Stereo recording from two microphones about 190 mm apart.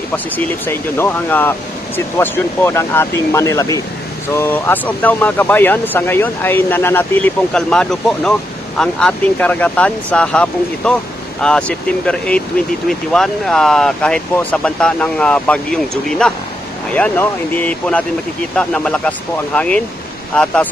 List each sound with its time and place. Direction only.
0.7 s speech: 10° left (ahead or behind)